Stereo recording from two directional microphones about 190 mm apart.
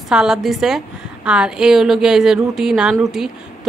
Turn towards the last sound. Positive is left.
turn(degrees=0)  # may be behind; listen again after turning